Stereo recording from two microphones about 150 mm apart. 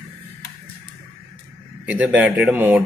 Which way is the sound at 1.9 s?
10° right (ahead or behind).